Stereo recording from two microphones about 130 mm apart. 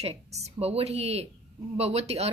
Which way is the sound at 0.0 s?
55° right (ahead or behind).